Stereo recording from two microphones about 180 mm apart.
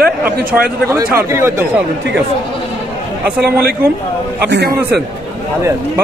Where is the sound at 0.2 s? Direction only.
5° right (ahead or behind).